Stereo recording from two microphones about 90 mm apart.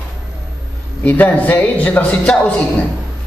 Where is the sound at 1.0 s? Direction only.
20° left (ahead or behind).